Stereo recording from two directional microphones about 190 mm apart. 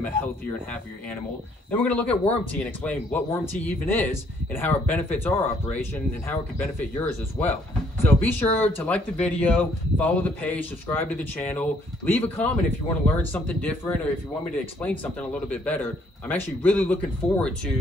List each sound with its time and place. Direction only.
0.0 s speech: 10° left (ahead or behind)